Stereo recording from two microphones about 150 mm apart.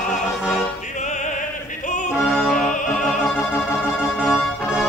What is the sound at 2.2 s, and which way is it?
Music, 5° left (ahead or behind).